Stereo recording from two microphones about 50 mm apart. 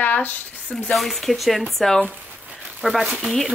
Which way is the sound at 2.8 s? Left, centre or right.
Centre.